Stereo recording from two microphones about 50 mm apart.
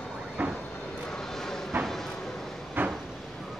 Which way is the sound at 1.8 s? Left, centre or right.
Centre.